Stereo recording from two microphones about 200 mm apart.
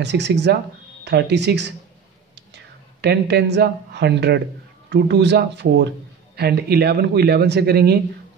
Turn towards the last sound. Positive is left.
turn(degrees=-55)  # may be behind; listen again after turning